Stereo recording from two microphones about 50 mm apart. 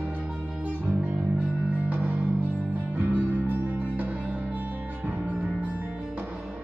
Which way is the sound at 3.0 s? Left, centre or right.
Right.